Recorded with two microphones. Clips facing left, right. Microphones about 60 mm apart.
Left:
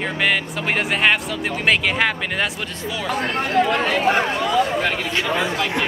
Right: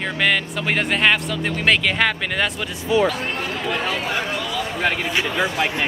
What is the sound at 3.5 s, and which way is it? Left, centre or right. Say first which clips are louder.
Speech: left 8 dB; left.